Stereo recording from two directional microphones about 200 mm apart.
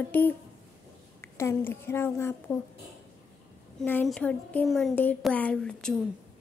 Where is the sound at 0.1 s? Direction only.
10° left (ahead or behind).